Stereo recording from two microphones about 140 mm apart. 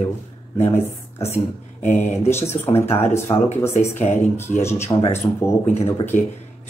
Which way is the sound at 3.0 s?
15° left (ahead or behind).